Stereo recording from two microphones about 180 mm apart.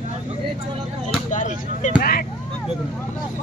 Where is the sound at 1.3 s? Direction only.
45° left (ahead or behind).